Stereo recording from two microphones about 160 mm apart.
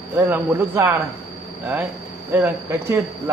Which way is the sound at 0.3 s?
15° right (ahead or behind).